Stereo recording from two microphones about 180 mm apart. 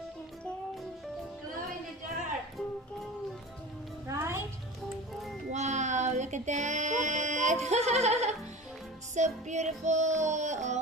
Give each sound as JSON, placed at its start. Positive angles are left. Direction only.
{"t": 4.1, "sound": "music", "side_deg": -15}
{"t": 5.5, "sound": "music", "side_deg": -40}